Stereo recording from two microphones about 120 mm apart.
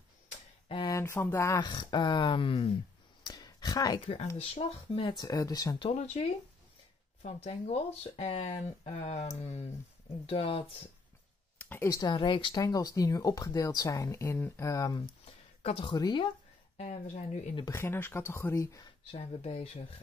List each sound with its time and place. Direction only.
0.8 s speech: 20° left (ahead or behind)
1.6 s speech: 40° left (ahead or behind)
3.3 s a sound: 35° left (ahead or behind)
4.0 s speech: 50° left (ahead or behind)
5.1 s speech: 35° left (ahead or behind)
5.9 s speech: 65° left (ahead or behind)
11.5 s speech: 20° left (ahead or behind); by 12.6 s 40° left (ahead or behind)
12.6 s speech: 30° left (ahead or behind)
15.0 s a sound: 55° left (ahead or behind)
15.9 s speech: 40° left (ahead or behind)
16.7 s speech: 60° left (ahead or behind)
17.6 s speech: 20° left (ahead or behind)
19.1 s speech: 55° left (ahead or behind)